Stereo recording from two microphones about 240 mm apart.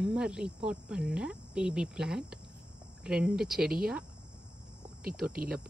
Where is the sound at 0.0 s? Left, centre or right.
Centre.